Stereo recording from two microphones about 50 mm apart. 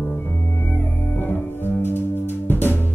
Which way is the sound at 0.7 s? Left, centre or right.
Left.